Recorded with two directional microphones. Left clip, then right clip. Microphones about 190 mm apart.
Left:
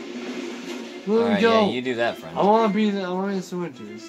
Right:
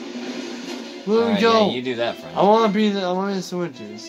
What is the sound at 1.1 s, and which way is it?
Speech, 30° right (ahead or behind).